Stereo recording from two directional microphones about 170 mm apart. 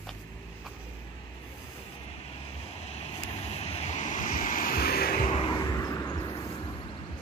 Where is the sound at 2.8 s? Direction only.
40° left (ahead or behind); by 5.3 s 60° left (ahead or behind).